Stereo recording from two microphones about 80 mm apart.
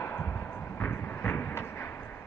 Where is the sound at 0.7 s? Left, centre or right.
Left.